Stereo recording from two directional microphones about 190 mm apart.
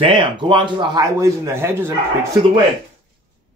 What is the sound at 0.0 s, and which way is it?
Speech, 25° right (ahead or behind).